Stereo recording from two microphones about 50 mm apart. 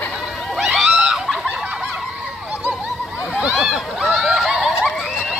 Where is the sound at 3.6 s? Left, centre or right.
Centre.